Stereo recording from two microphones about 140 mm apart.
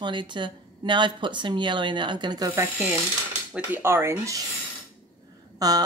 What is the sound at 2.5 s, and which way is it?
Speech, 15° right (ahead or behind).